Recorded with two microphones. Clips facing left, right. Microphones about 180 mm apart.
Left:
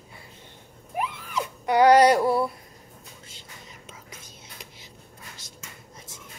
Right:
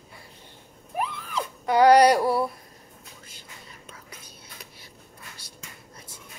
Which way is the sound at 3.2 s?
25° left (ahead or behind).